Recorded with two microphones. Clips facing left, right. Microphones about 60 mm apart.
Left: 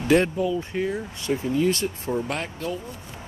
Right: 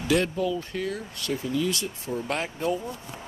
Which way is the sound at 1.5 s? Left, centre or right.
Left.